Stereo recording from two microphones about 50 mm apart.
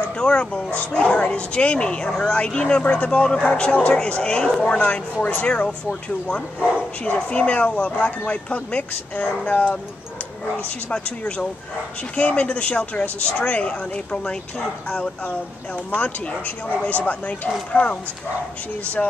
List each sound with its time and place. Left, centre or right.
0.2 s speech: left
4.0 s speech: centre
4.7 s speech: left
5.5 s speech: centre
10.9 s speech: left
14.9 s speech: left
19.0 s speech: left